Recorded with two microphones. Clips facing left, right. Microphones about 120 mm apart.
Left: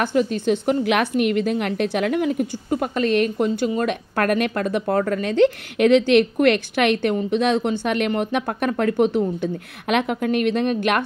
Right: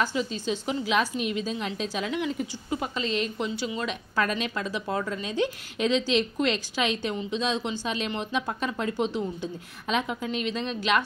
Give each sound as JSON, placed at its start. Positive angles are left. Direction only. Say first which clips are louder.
{"t": 0.0, "sound": "a woman's voice", "louder": "left 8 dB", "side_deg": 55}